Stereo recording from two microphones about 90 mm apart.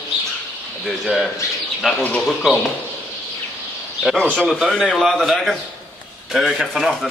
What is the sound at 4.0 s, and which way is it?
A man's voice, centre (ahead or behind).